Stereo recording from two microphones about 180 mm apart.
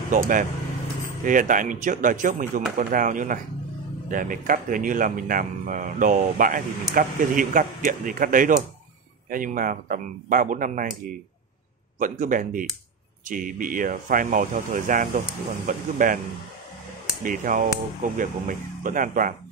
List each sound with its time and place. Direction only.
0.1 s speech: 50° right (ahead or behind)
12.0 s speech: 45° right (ahead or behind)
17.2 s speech: 45° right (ahead or behind)